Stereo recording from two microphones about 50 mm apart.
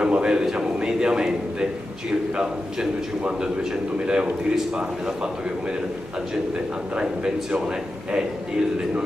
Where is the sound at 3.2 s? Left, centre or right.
Centre.